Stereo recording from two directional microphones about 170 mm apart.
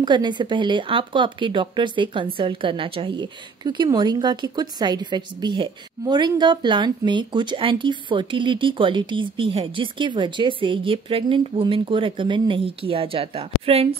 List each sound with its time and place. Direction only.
0.0 s speech: 25° right (ahead or behind)